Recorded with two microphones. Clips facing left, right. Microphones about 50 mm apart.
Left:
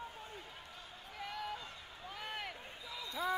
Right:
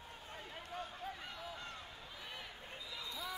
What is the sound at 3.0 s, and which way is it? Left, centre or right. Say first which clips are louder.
Basketball bounce: left 9 dB; left.